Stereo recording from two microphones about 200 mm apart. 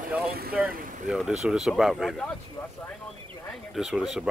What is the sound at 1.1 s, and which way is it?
Speech, centre (ahead or behind).